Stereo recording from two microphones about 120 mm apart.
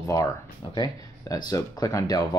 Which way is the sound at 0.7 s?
35° left (ahead or behind).